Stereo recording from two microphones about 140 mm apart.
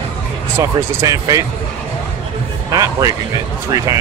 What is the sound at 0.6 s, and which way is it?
Speech, 25° right (ahead or behind).